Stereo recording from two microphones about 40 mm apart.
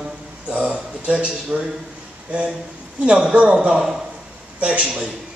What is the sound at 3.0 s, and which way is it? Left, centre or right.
Speech, right.